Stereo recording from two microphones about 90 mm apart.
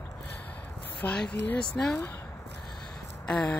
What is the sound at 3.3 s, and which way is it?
Speech, 5° left (ahead or behind).